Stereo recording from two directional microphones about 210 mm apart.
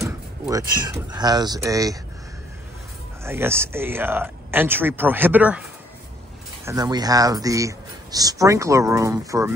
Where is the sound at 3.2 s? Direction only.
10° right (ahead or behind).